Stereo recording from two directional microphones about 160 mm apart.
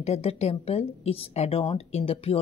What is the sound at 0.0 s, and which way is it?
Speech, 40° left (ahead or behind).